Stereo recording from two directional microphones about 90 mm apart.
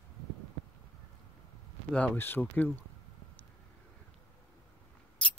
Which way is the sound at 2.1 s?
25° left (ahead or behind).